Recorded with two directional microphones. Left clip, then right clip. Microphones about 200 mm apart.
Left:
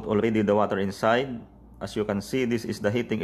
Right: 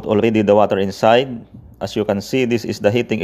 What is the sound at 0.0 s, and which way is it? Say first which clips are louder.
Speech: right 9 dB; 25° right (ahead or behind).